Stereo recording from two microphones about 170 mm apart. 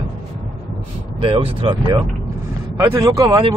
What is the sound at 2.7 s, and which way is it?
Speech, 20° right (ahead or behind).